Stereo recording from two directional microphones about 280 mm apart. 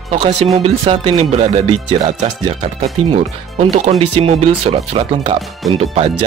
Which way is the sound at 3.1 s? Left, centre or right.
Right.